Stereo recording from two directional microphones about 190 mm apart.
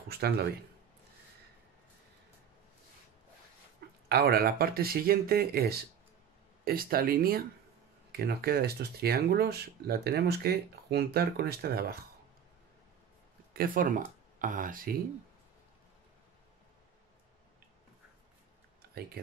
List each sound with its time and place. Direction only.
0.1 s speech: 55° right (ahead or behind)
4.1 s speech: 55° right (ahead or behind)
13.5 s speech: 50° right (ahead or behind)